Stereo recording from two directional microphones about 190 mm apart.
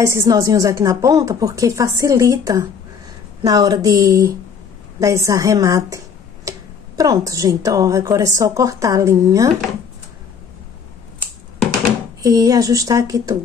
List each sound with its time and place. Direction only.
0.0 s a woman's voice: 15° right (ahead or behind)
12.2 s a woman's voice: 20° right (ahead or behind)